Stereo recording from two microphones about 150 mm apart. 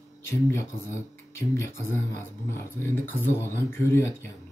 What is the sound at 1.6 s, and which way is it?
Speech, 15° left (ahead or behind).